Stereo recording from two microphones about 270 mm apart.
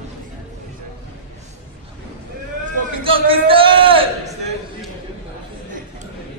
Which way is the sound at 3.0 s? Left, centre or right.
Centre.